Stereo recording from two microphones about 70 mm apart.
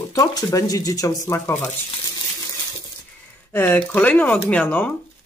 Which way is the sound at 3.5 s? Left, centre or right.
Left.